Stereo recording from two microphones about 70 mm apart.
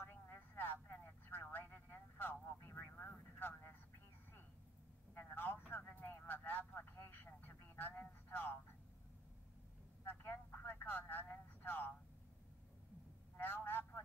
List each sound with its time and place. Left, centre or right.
0.1 s a sound: left
1.0 s vehicle: left
5.1 s vehicle: left
5.7 s a sound: left
10.0 s telephone: left
13.4 s vehicle: left